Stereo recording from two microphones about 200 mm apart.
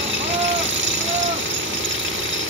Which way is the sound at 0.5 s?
70° right (ahead or behind).